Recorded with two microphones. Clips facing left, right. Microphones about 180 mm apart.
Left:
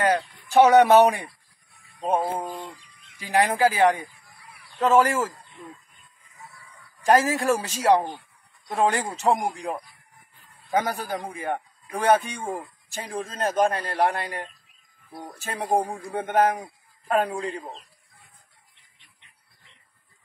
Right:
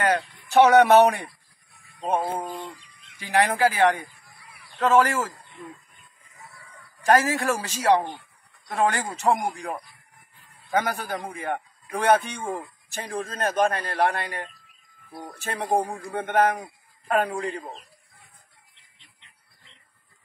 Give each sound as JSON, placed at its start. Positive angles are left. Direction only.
{"t": 0.0, "sound": "speech", "side_deg": 15}
{"t": 7.1, "sound": "speech", "side_deg": 15}
{"t": 15.5, "sound": "speech", "side_deg": 15}